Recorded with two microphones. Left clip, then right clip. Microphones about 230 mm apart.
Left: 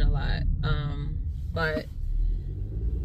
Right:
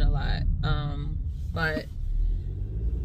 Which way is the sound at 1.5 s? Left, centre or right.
Centre.